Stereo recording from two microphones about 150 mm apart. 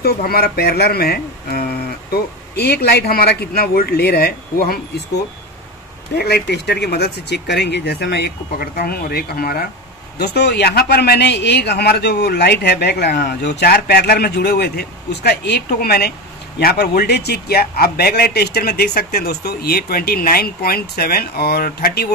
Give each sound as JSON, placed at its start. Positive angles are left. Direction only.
{"t": 0.0, "sound": "a man's voice", "side_deg": 90}
{"t": 6.1, "sound": "a man's voice", "side_deg": 90}